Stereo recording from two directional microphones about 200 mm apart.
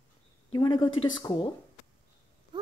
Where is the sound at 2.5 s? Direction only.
25° right (ahead or behind).